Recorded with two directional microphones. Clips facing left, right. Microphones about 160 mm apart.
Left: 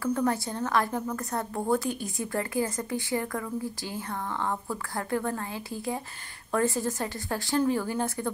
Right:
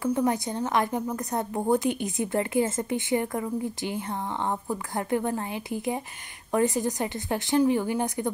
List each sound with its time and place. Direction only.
0.0 s a woman's voice: 20° right (ahead or behind)